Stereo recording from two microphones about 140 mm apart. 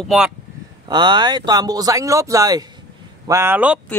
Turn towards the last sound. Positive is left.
turn(degrees=-15)  # may be behind; listen again after turning